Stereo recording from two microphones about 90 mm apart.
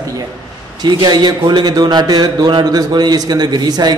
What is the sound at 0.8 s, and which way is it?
A man's voice, 50° right (ahead or behind).